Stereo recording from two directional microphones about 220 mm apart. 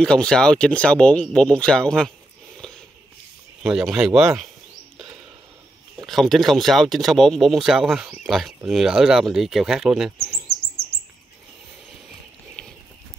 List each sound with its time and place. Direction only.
0.0 s speech: 5° left (ahead or behind)
6.0 s speech: centre (ahead or behind)
12.6 s a sound: 5° left (ahead or behind)